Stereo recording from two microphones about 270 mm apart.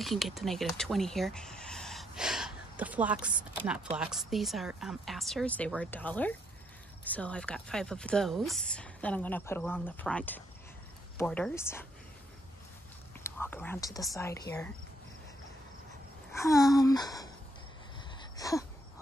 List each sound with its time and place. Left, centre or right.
0.0 s speech: centre
3.2 s speech: centre
3.9 s a woman's voice: centre
13.2 s a woman's voice: centre
16.6 s a woman's voice: centre
18.4 s a sound: centre